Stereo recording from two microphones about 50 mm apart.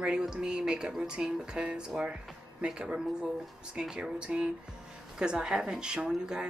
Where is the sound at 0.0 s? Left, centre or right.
Centre.